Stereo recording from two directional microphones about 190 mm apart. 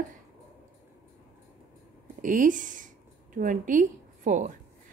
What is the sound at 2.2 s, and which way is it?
Speech, 45° right (ahead or behind).